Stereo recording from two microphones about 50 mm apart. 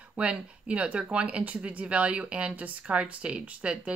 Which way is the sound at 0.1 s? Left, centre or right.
Right.